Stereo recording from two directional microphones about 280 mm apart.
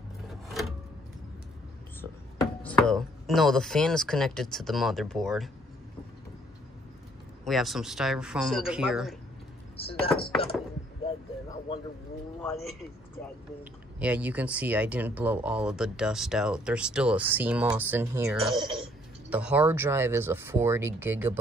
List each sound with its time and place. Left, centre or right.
0.3 s a sound: centre
2.6 s speech: centre
7.4 s speech: centre
9.8 s speech: left
11.1 s heart sounds: centre
12.4 s speech: centre
13.9 s speech: centre
18.5 s speech: centre
19.2 s speech: centre